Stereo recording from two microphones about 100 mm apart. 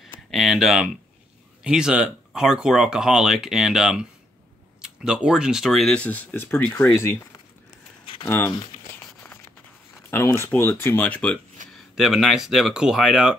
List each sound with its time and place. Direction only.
0.3 s speech: centre (ahead or behind)
6.0 s speech: 20° left (ahead or behind)
8.8 s crumpling: 20° left (ahead or behind)
10.1 s speech: 25° left (ahead or behind)
11.9 s speech: centre (ahead or behind)